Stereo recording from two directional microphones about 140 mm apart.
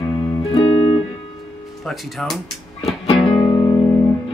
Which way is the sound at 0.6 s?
45° left (ahead or behind).